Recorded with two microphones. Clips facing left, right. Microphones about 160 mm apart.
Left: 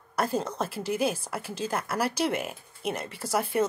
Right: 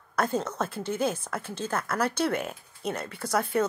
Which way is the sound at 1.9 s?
30° left (ahead or behind).